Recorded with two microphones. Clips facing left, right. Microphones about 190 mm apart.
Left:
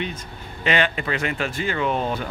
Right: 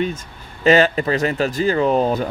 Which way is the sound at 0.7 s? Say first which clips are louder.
Right 8 dB; 40° right (ahead or behind).